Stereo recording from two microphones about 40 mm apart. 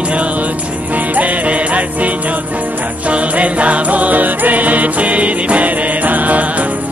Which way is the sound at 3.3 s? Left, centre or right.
Right.